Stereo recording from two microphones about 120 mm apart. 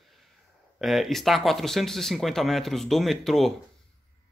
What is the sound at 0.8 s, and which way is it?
Speech, centre (ahead or behind).